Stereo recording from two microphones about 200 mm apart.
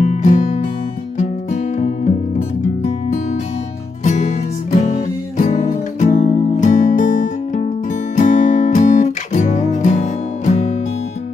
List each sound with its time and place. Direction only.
0.0 s music: 40° left (ahead or behind)